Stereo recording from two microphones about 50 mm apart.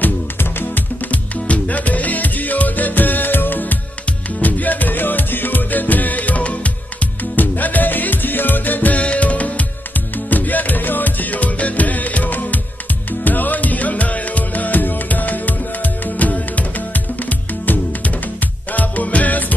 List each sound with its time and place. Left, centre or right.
0.0 s music: left